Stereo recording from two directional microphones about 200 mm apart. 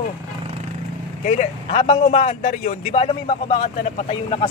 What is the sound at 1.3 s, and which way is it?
A man's voice, 30° left (ahead or behind).